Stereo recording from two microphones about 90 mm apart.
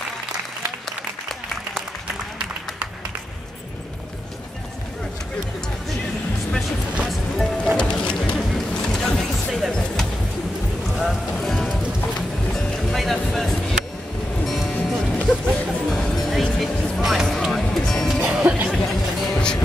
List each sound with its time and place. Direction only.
0.8 s applause: centre (ahead or behind)
7.1 s music: 5° left (ahead or behind)
14.8 s music: 10° left (ahead or behind)